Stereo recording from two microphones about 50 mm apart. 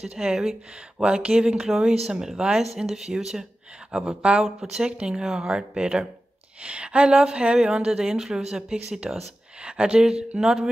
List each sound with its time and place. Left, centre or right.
0.0 s speech: centre
0.7 s speech: centre
3.9 s speech: right; by 9.2 s centre
9.6 s speech: right